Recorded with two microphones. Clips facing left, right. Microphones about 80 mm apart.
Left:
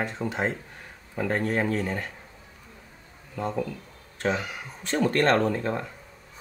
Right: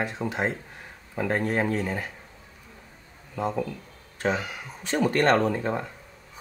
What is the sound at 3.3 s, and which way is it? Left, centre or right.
Speech, centre.